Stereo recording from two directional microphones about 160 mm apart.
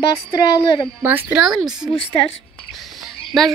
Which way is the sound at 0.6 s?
30° left (ahead or behind).